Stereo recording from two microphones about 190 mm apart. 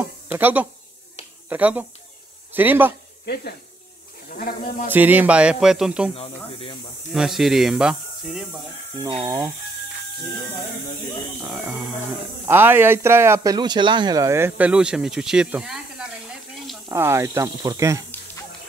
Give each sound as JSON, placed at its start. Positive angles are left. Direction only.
{"t": 0.3, "sound": "speech", "side_deg": -10}
{"t": 3.3, "sound": "speech", "side_deg": 60}
{"t": 4.9, "sound": "speech", "side_deg": -10}
{"t": 6.1, "sound": "speech", "side_deg": 30}
{"t": 7.1, "sound": "speech", "side_deg": 0}
{"t": 11.6, "sound": "a man's voice", "side_deg": 0}
{"t": 16.9, "sound": "speech", "side_deg": -15}